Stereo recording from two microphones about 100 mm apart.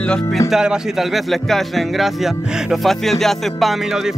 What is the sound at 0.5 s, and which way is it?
Speech, 5° right (ahead or behind).